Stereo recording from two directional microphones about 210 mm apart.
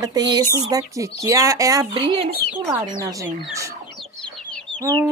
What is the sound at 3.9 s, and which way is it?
Chicken, centre (ahead or behind).